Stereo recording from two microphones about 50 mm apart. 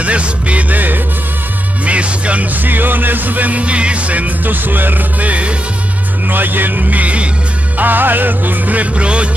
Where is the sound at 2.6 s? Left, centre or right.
Right.